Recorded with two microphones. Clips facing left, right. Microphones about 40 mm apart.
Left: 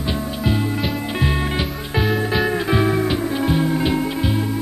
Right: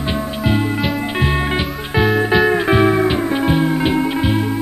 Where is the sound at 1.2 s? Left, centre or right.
Centre.